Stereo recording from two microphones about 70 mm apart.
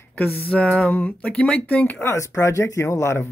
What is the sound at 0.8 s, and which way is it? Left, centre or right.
Speech, left.